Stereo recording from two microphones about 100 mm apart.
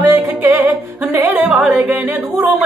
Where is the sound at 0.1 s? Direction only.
20° right (ahead or behind).